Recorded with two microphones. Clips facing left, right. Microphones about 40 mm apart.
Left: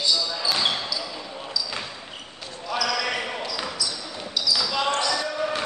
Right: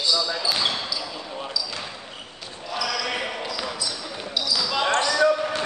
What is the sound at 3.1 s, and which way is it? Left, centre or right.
Basketball bounce, centre.